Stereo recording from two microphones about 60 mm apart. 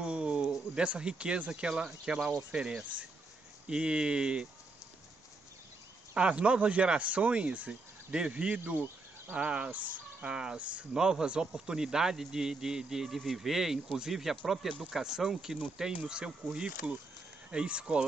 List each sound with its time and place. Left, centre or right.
0.0 s speech: centre
6.1 s speech: centre
10.3 s speech: centre